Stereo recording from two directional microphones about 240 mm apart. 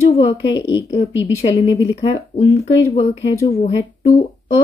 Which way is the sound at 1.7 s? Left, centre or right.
Centre.